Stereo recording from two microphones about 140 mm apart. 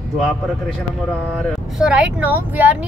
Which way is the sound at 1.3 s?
5° right (ahead or behind).